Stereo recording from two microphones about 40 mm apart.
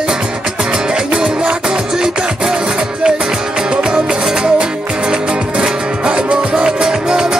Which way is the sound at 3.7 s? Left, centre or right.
Centre.